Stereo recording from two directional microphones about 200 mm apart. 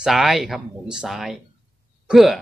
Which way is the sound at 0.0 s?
Centre (ahead or behind).